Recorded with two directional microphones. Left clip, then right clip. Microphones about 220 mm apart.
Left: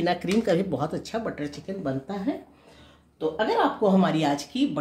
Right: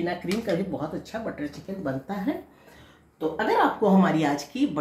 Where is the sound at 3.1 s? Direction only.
25° left (ahead or behind).